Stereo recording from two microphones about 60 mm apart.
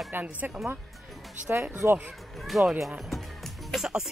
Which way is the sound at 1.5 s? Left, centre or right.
Right.